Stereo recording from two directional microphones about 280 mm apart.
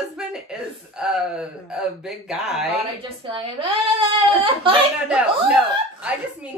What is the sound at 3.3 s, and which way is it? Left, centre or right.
A woman's voice, centre.